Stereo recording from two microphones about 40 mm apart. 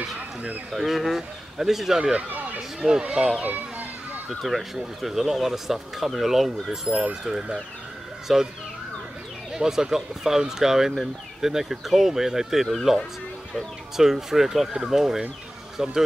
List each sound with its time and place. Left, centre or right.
0.8 s speech: centre
2.0 s speech: centre
2.2 s speech: right
2.8 s speech: right
3.4 s children playing: right
4.3 s speech: centre
7.2 s speech: centre
8.3 s speech: centre
9.5 s speech: centre